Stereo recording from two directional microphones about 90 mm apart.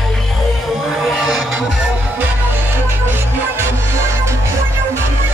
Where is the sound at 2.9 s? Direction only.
25° right (ahead or behind).